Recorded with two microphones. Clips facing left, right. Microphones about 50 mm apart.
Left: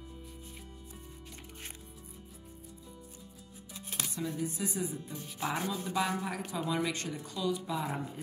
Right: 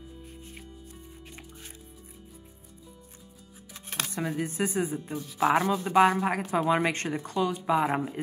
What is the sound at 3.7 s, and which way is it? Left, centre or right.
Music, right.